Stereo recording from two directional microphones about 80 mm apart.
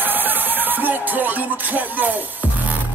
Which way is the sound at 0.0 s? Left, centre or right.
Right.